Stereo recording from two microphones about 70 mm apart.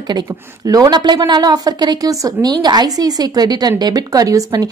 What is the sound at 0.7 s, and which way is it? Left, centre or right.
A woman's voice, right.